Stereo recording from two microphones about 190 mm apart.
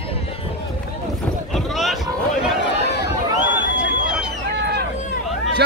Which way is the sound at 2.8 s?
60° left (ahead or behind).